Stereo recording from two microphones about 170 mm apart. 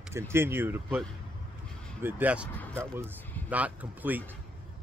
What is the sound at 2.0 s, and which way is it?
Speech, 10° right (ahead or behind).